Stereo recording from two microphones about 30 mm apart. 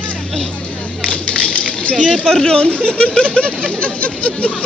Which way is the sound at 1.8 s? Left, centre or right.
Left.